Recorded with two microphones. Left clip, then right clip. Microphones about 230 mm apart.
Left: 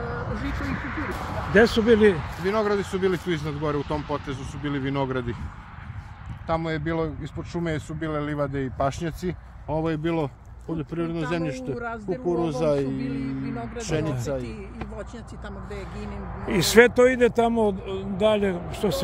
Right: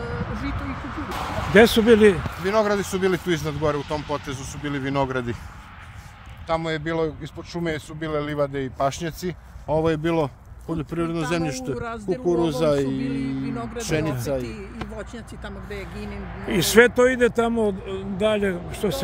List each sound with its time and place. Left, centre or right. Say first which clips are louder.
0.3 s a sound: right 1 dB; right
1.0 s speech: right 2 dB; right
1.5 s speech: right 3 dB; right
2.1 s speech: right 4 dB; right
6.4 s speech: right 2 dB; right
16.5 s speech: right 1 dB; centre